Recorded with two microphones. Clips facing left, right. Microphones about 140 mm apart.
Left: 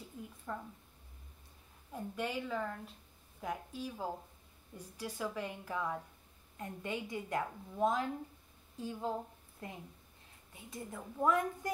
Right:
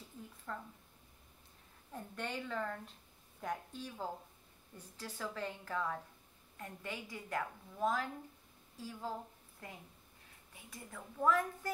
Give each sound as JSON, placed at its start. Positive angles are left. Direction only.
{"t": 0.5, "sound": "a woman's voice", "side_deg": 15}
{"t": 1.9, "sound": "a woman's voice", "side_deg": 10}